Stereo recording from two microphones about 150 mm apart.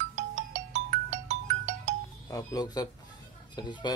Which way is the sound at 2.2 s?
25° left (ahead or behind).